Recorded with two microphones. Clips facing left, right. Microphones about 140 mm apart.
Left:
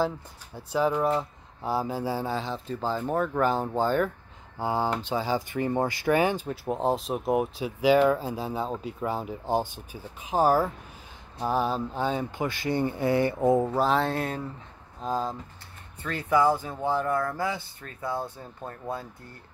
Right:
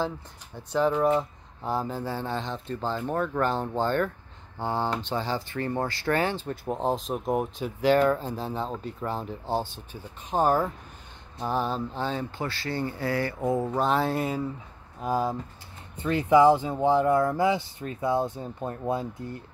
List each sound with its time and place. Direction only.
0.6 s speech: 5° left (ahead or behind); by 13.7 s 25° left (ahead or behind)
13.7 s speech: centre (ahead or behind); by 19.0 s 15° right (ahead or behind)